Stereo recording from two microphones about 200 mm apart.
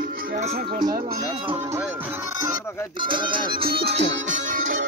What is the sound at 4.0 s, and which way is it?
Music, 65° right (ahead or behind).